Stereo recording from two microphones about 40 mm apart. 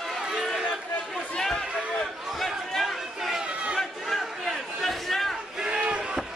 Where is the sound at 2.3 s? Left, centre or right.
Centre.